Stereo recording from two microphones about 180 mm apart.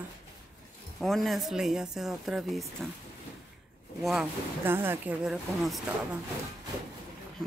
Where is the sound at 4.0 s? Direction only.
Centre (ahead or behind).